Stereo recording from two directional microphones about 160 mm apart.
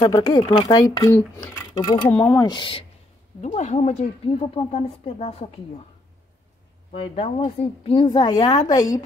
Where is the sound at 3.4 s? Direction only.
45° left (ahead or behind).